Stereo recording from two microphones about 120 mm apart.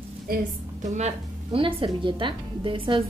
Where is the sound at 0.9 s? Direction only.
70° right (ahead or behind).